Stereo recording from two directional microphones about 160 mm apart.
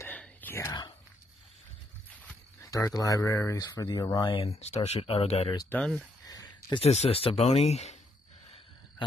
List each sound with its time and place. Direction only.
0.0 s whispering: 10° left (ahead or behind)
2.6 s speech: 20° left (ahead or behind); by 5.5 s 40° left (ahead or behind)
5.7 s speech: 5° left (ahead or behind)
6.2 s a sound: 25° left (ahead or behind)
6.8 s speech: 40° left (ahead or behind)